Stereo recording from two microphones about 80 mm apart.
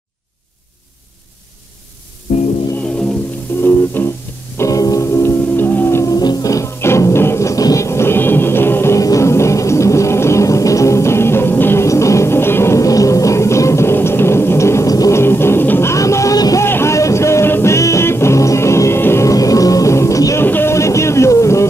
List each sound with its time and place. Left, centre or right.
3.6 s music: left
4.6 s music: left
6.0 s music: left
15.1 s music: left
15.9 s music: left
16.6 s music: left
19.2 s music: left
20.3 s vehicle: left
20.7 s music: left